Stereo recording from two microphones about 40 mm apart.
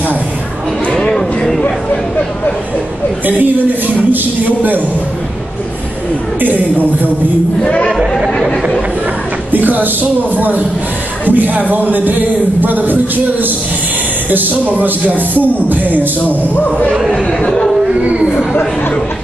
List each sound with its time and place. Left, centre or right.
0.9 s a sound: centre
3.3 s a man's voice: right
9.5 s a man's voice: right
17.1 s speech: left
18.0 s a sound: right
18.5 s chatter: left